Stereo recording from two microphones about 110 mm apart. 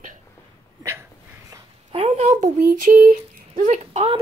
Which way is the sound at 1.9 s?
75° right (ahead or behind).